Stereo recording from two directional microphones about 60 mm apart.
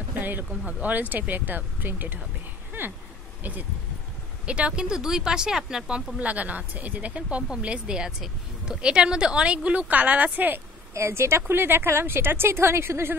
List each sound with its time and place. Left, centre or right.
0.2 s speech: right
0.5 s speech: right
2.8 s a sound: right
4.5 s speech: centre
11.0 s a woman's voice: right